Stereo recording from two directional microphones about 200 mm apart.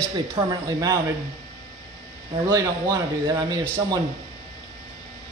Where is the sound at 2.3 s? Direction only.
15° right (ahead or behind).